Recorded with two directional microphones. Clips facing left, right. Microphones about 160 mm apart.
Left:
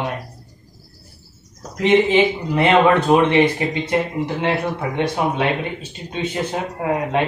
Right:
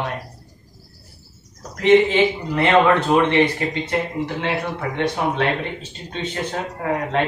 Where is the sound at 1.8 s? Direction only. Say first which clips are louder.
Even; 20° left (ahead or behind).